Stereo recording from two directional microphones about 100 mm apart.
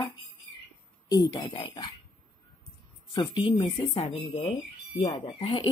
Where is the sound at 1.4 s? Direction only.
50° left (ahead or behind).